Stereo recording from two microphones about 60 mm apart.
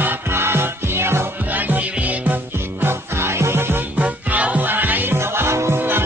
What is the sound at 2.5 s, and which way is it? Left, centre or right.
Music, right.